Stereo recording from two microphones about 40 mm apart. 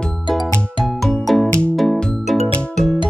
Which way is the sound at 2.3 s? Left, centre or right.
Centre.